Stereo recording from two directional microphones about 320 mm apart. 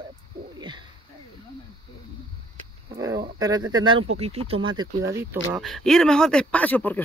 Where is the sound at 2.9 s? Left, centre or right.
Centre.